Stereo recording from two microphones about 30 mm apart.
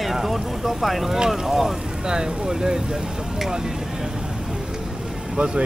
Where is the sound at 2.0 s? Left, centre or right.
Right.